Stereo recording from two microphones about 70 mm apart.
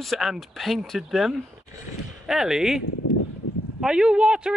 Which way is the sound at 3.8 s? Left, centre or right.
Centre.